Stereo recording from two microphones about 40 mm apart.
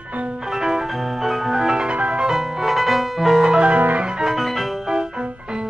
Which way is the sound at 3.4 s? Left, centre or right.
Right.